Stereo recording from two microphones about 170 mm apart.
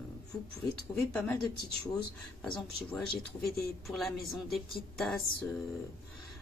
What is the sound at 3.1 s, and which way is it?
Speech, 65° left (ahead or behind).